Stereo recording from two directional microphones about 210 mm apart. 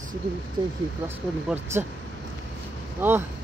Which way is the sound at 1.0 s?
10° right (ahead or behind).